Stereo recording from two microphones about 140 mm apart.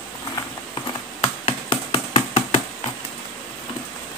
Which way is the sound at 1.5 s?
40° left (ahead or behind).